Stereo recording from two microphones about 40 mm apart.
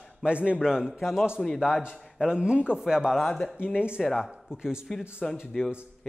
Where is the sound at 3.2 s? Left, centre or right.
Centre.